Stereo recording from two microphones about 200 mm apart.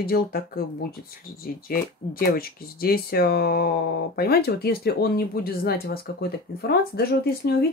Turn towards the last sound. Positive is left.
turn(degrees=55)  # may be behind; listen again after turning